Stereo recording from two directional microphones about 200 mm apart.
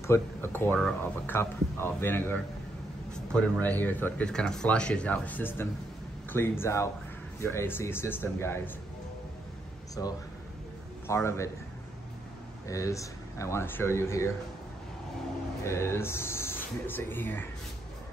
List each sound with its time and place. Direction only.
0.0 s speech: 10° left (ahead or behind)
10.0 s speech: 15° left (ahead or behind)
12.6 s speech: 15° left (ahead or behind)
15.6 s speech: 15° left (ahead or behind)